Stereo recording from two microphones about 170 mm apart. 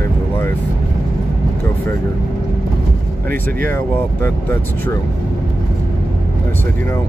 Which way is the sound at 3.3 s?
10° left (ahead or behind).